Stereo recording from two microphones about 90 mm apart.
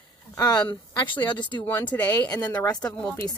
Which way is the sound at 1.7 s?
20° left (ahead or behind).